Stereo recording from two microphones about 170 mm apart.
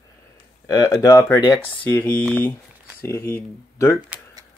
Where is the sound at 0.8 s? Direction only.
20° left (ahead or behind).